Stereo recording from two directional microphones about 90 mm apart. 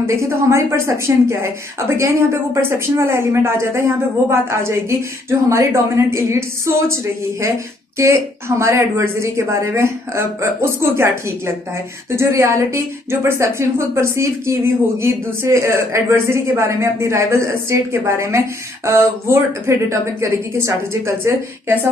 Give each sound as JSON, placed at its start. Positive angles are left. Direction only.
{"t": 0.0, "sound": "a woman's voice", "side_deg": -30}